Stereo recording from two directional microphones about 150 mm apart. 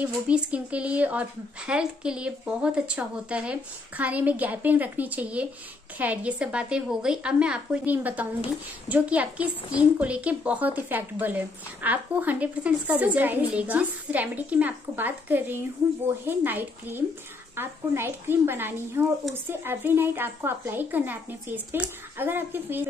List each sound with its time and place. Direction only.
0.0 s a woman's voice: 10° right (ahead or behind)